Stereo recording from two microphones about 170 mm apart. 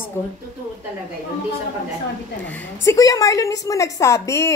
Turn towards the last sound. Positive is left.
turn(degrees=15)  # may be behind; listen again after turning